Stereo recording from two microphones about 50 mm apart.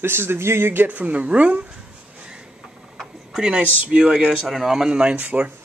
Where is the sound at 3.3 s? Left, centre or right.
Centre.